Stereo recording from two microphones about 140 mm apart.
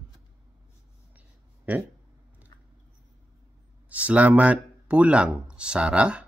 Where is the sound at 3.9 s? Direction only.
10° right (ahead or behind).